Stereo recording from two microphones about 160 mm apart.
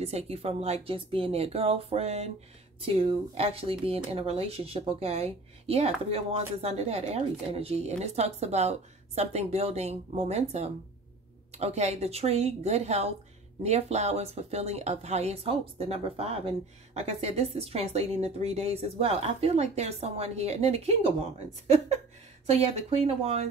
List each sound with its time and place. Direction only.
0.0 s speech: 40° right (ahead or behind)